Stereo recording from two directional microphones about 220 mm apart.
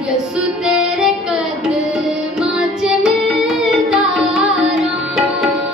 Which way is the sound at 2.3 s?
5° right (ahead or behind).